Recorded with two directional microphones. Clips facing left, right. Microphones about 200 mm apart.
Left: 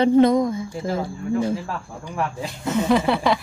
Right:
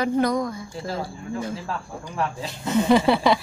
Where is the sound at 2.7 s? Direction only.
Centre (ahead or behind).